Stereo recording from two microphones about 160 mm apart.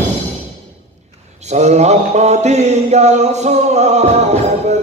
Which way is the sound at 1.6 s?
45° right (ahead or behind).